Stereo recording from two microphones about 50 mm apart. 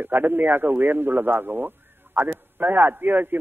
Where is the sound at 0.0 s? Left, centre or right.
Right.